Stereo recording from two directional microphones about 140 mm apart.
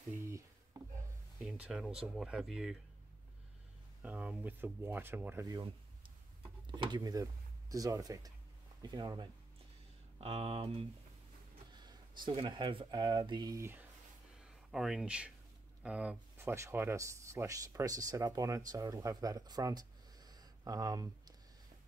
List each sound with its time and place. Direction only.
1.4 s speech: 5° right (ahead or behind)
4.0 s speech: 10° right (ahead or behind)
5.5 s speech: 35° right (ahead or behind)
10.2 s speech: 45° right (ahead or behind)
11.7 s a sound: 30° right (ahead or behind)
12.2 s speech: 35° right (ahead or behind); by 13.8 s 20° right (ahead or behind)
14.4 s speech: 5° right (ahead or behind); by 21.1 s 25° right (ahead or behind)